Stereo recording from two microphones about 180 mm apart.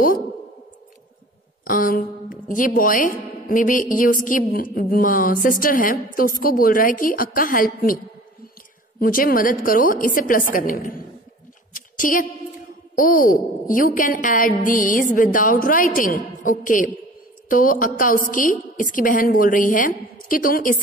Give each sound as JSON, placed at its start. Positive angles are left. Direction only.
{"t": 1.6, "sound": "a woman's voice", "side_deg": 50}
{"t": 9.0, "sound": "a woman's voice", "side_deg": 50}
{"t": 11.7, "sound": "a sound", "side_deg": 50}
{"t": 13.0, "sound": "a woman's voice", "side_deg": 50}